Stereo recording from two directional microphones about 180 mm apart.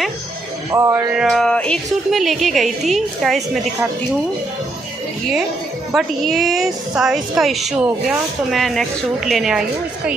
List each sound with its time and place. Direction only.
0.7 s speech: 15° right (ahead or behind)
1.3 s a woman's voice: 5° left (ahead or behind)
5.9 s a woman's voice: centre (ahead or behind)